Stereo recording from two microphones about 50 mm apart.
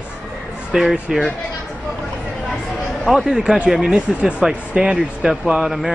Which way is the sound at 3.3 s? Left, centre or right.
Centre.